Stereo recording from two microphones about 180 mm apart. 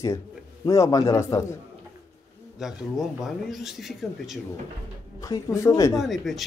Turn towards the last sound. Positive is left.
turn(degrees=0)  # may be behind; listen again after turning